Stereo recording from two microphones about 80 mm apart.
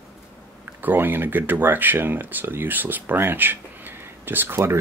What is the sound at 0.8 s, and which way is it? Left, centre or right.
Speech, right.